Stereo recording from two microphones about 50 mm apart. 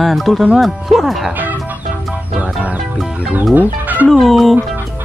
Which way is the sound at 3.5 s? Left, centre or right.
Right.